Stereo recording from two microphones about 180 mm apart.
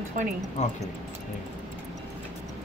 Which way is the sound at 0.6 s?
40° left (ahead or behind).